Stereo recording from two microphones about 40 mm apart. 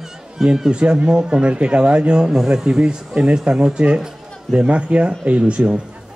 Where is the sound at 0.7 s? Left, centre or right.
Right.